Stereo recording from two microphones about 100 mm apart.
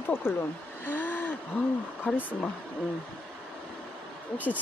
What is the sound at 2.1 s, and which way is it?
Speech, 15° left (ahead or behind).